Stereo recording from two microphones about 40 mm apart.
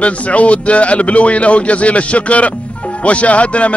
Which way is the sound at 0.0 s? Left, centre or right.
Left.